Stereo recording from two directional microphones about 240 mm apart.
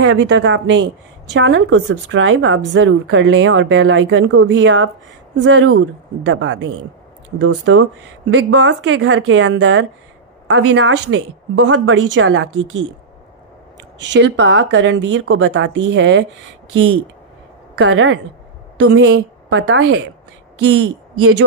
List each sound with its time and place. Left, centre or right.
0.0 s speech: right
14.1 s speech: right
17.7 s a woman's voice: right
21.2 s speech: right